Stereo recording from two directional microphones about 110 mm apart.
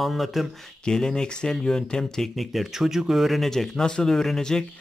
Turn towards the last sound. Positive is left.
turn(degrees=5)  # may be behind; listen again after turning